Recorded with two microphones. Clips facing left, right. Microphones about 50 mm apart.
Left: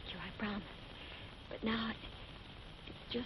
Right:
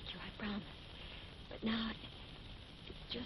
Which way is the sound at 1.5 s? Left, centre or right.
Centre.